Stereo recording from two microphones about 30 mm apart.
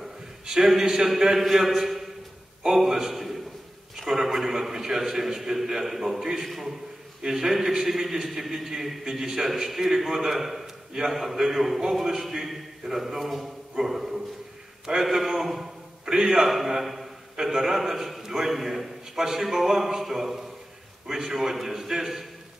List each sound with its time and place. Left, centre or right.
0.0 s a sound: centre
1.4 s a man's voice: centre
6.4 s a man's voice: centre
7.2 s a man's voice: centre
16.4 s a man's voice: centre
16.8 s a sound: centre
17.4 s a man's voice: centre